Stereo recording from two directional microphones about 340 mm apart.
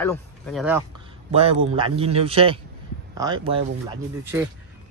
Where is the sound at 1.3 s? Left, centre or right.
Centre.